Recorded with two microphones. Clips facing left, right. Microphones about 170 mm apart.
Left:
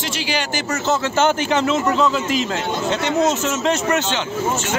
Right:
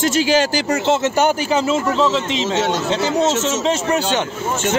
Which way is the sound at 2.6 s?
80° right.